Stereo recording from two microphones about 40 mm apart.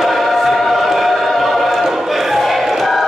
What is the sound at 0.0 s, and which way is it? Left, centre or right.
Choir, centre.